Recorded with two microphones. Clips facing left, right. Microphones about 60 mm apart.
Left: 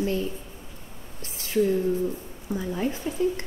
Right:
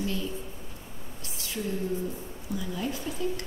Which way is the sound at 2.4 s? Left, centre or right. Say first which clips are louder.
Left 5 dB; left.